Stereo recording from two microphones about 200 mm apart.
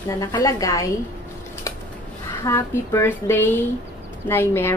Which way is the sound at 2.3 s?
15° left (ahead or behind).